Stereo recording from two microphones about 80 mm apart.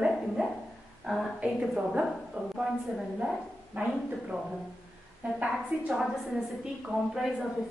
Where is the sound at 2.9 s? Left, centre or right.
Centre.